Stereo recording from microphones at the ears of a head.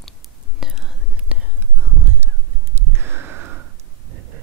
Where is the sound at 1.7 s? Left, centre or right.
Right.